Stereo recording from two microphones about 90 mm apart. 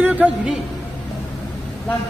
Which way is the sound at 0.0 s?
15° right (ahead or behind).